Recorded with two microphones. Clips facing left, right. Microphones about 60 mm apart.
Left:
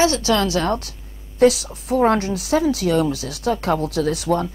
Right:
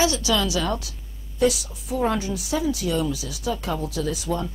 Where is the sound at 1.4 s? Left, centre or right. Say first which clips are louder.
Left 6 dB; left.